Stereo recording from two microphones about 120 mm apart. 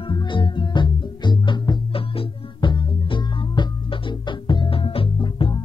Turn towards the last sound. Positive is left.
turn(degrees=45)  # may be behind; listen again after turning